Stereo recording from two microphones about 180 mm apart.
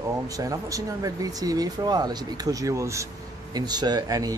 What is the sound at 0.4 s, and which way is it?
Speech, 20° right (ahead or behind).